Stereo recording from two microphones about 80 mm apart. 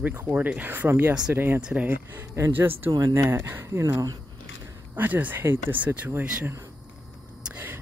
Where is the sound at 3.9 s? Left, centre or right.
Right.